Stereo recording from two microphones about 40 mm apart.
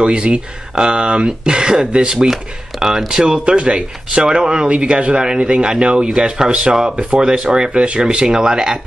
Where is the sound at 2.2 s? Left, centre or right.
Centre.